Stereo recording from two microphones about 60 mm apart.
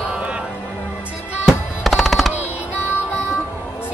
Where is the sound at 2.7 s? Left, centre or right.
Left.